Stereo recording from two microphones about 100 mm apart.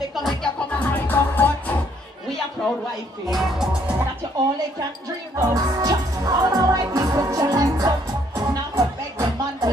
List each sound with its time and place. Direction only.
0.1 s music: centre (ahead or behind)
0.7 s music: 15° left (ahead or behind)
3.3 s speech: 5° right (ahead or behind)
5.4 s music: 35° right (ahead or behind)